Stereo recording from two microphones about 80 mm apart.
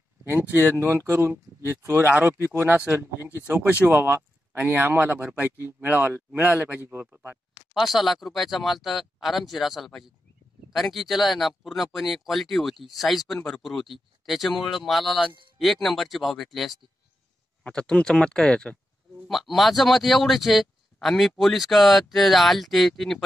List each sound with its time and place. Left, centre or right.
0.2 s speech: right
7.7 s speech: centre
17.6 s speech: centre
19.2 s speech: centre